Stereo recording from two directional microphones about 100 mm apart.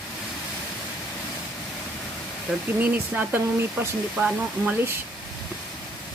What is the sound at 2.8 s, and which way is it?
Speech, 15° right (ahead or behind).